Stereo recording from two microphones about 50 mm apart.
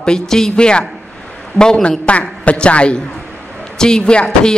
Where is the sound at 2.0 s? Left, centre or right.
Left.